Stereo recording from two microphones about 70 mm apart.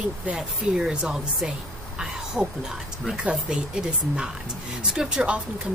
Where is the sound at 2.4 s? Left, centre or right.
Left.